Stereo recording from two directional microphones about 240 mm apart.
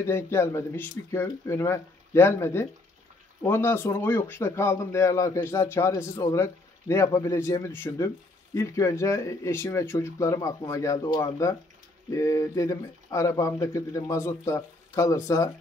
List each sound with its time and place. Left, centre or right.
0.0 s a man's voice: centre